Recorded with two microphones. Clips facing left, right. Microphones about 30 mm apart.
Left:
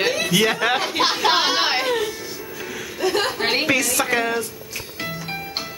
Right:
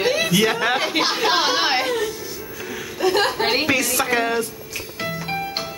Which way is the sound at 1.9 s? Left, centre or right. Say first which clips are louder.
Even; centre.